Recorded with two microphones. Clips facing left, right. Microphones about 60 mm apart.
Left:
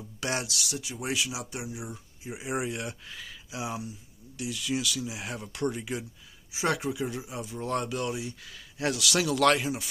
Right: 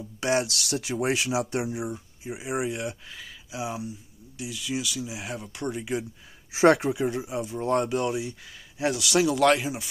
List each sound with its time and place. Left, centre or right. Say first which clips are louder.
0.2 s speech: right 7 dB; right
0.5 s speech: right 5 dB; right
0.9 s speech: right 7 dB; right
1.9 s speech: right 5 dB; centre
6.5 s speech: right 10 dB; right
6.9 s speech: right 5 dB; right
8.9 s speech: right 5 dB; centre